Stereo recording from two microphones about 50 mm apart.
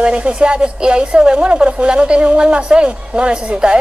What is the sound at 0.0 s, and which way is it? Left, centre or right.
A woman's voice, right.